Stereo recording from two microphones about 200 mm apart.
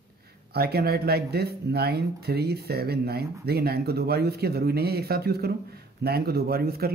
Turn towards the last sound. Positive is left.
turn(degrees=-50)  # may be behind; listen again after turning